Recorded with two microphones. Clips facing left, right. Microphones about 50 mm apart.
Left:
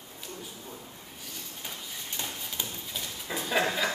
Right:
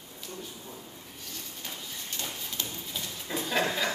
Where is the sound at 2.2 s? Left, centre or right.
Left.